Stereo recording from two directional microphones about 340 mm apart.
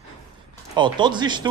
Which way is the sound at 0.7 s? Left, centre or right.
Centre.